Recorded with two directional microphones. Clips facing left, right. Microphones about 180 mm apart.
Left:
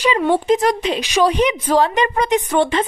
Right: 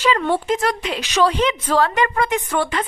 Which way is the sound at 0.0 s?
15° left (ahead or behind).